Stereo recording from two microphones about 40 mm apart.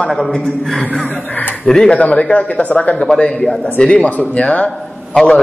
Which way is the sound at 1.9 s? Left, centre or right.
Left.